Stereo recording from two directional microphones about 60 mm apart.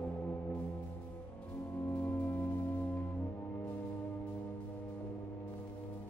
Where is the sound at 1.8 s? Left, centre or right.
Left.